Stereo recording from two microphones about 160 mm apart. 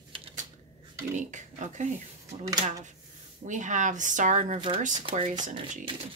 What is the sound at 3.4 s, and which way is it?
Speech, 50° right (ahead or behind).